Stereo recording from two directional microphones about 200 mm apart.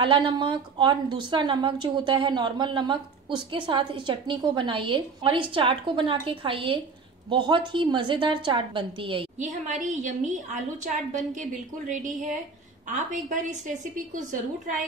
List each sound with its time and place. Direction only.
0.0 s a woman's voice: 25° right (ahead or behind)
9.4 s a woman's voice: 40° right (ahead or behind)
11.9 s a woman's voice: 40° right (ahead or behind)